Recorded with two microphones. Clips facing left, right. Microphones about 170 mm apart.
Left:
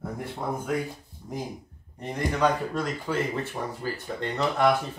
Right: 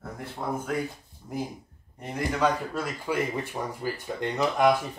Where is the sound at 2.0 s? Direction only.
5° right (ahead or behind).